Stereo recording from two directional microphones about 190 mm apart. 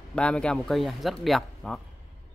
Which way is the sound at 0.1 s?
5° left (ahead or behind).